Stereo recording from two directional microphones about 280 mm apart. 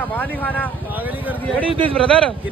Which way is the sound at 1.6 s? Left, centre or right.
Centre.